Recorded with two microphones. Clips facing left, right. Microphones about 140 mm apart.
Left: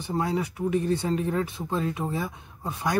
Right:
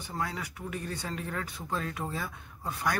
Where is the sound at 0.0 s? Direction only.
25° left (ahead or behind).